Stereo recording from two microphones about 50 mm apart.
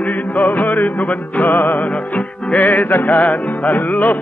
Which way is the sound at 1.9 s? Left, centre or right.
Left.